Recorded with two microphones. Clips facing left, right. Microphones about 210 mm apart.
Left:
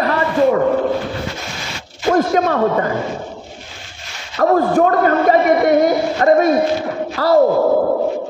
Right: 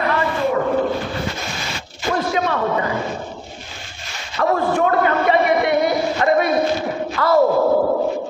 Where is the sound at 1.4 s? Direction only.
Centre (ahead or behind).